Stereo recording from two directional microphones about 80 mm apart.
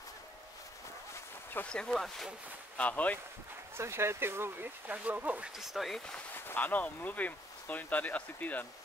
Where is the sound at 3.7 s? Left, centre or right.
Right.